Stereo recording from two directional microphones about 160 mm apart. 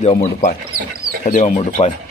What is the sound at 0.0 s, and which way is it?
Speech, 40° left (ahead or behind).